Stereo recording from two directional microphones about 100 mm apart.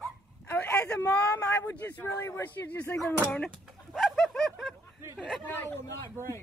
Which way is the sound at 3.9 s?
Centre (ahead or behind).